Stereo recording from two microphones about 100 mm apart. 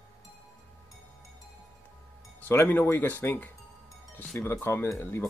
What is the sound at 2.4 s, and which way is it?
Speech, 20° left (ahead or behind).